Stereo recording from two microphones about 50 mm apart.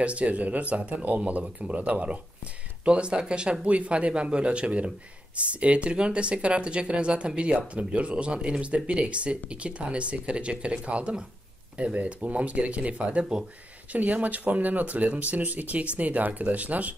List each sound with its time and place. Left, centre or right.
0.0 s speech: right
13.2 s speech: centre
13.9 s speech: right